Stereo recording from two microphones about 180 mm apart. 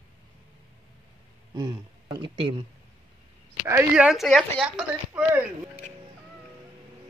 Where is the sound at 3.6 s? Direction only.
10° right (ahead or behind).